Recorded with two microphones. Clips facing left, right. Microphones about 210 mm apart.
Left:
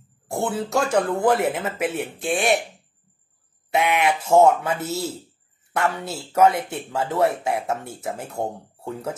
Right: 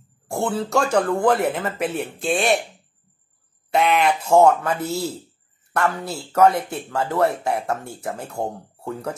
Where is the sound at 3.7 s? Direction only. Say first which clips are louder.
Right 2 dB; centre (ahead or behind).